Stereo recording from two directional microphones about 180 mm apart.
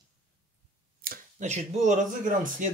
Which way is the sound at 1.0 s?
45° right (ahead or behind).